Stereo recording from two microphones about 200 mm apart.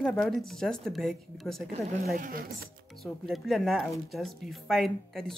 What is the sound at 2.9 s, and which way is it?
Speech, centre (ahead or behind).